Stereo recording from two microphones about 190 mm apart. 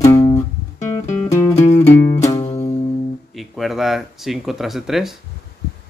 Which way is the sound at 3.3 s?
Centre (ahead or behind).